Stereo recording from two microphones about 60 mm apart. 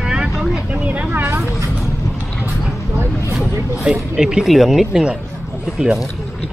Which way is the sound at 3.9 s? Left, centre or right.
Centre.